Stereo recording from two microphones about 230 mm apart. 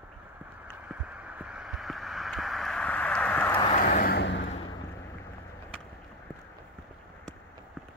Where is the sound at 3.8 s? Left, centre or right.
Left.